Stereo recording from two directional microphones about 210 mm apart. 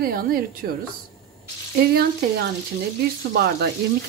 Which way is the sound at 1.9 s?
50° right (ahead or behind).